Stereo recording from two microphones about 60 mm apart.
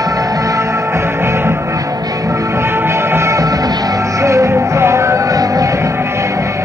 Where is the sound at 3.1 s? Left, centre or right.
Right.